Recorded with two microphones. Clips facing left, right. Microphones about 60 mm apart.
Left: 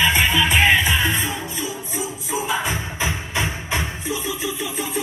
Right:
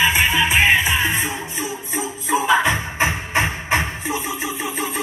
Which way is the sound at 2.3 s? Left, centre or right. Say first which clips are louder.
Right 7 dB; right.